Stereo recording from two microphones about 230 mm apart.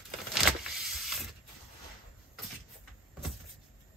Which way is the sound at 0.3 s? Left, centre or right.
Centre.